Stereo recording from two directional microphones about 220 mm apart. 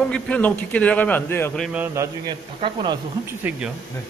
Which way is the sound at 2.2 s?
20° right (ahead or behind).